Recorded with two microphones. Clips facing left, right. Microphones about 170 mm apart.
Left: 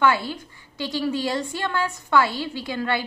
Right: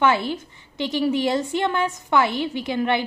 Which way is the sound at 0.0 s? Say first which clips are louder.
Right 1 dB; 20° right (ahead or behind).